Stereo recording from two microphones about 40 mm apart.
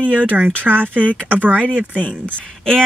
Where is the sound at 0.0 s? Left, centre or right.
Right.